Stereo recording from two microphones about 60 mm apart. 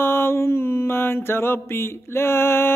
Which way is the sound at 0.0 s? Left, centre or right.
Left.